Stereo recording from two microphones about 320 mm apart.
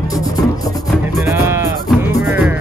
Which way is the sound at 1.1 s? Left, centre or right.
Centre.